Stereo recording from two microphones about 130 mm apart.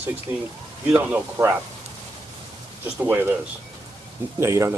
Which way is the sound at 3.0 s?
15° right (ahead or behind).